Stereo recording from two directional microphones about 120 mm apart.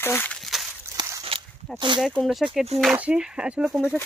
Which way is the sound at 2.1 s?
Centre (ahead or behind).